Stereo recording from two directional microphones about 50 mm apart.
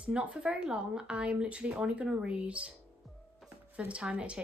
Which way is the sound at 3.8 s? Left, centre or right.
Right.